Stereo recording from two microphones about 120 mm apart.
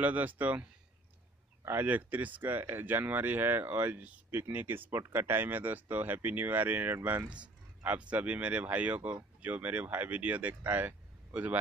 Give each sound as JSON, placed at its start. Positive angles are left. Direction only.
{"t": 0.0, "sound": "speech", "side_deg": -15}